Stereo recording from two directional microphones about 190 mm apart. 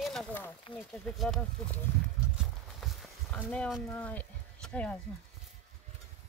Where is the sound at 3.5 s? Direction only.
5° left (ahead or behind).